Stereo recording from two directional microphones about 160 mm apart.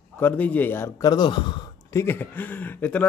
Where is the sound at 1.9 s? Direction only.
15° left (ahead or behind).